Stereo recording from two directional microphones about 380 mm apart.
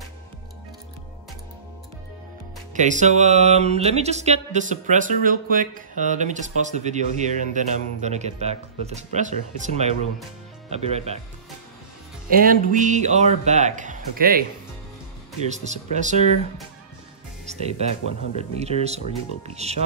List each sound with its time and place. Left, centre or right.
2.7 s music: centre
7.2 s speech: centre
12.3 s music: right
15.4 s speech: centre
17.5 s speech: centre